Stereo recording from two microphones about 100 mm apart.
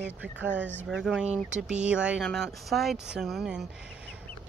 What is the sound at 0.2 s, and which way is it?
Speech, 15° right (ahead or behind).